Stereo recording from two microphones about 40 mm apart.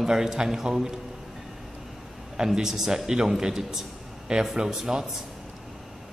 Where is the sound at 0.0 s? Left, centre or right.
Centre.